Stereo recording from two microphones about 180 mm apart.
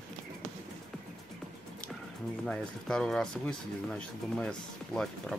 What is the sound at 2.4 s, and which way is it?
Speech, centre (ahead or behind).